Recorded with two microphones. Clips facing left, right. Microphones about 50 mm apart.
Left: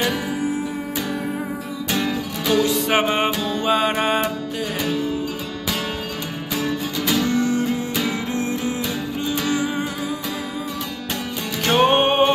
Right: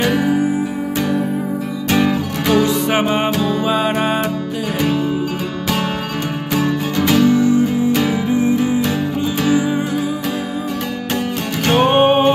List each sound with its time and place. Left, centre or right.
0.1 s music: right
1.9 s music: right
2.9 s music: centre
3.3 s music: centre
3.6 s music: centre
7.1 s music: centre
11.6 s music: centre